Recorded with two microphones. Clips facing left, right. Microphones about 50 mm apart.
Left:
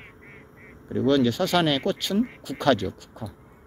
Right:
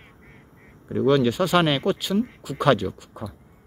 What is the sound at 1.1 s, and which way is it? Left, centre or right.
Speech, centre.